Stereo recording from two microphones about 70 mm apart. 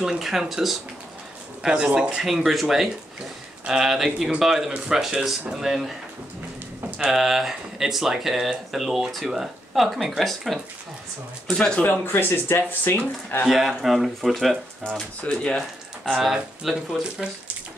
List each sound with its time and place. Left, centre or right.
0.0 s speech: centre
7.0 s speech: centre
11.8 s speech: left
13.5 s speech: centre
15.0 s speech: centre
16.2 s speech: centre